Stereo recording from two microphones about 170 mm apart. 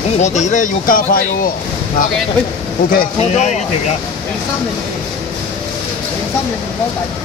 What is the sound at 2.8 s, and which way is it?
Speech, 50° left (ahead or behind).